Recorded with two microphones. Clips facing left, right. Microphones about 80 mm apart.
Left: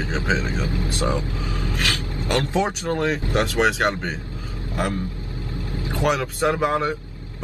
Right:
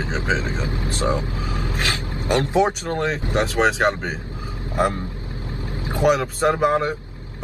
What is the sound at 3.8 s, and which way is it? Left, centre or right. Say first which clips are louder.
Speech: right 2 dB; centre.